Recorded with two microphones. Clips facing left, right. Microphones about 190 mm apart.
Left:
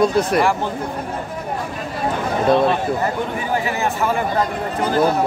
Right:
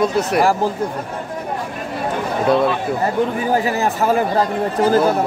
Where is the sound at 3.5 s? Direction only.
40° right (ahead or behind).